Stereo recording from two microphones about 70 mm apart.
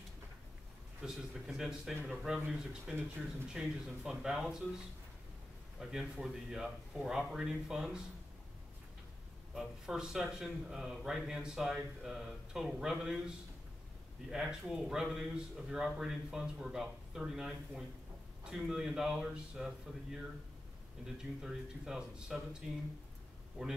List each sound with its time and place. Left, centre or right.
1.0 s a man's voice: centre
5.8 s a man's voice: centre
9.5 s a man's voice: centre
14.3 s a man's voice: centre
21.2 s a man's voice: centre